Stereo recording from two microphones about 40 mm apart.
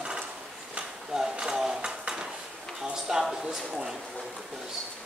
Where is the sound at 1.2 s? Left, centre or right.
Centre.